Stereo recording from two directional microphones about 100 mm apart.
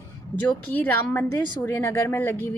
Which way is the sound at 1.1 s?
20° left (ahead or behind).